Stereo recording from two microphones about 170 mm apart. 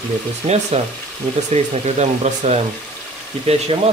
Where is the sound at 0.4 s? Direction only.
30° right (ahead or behind).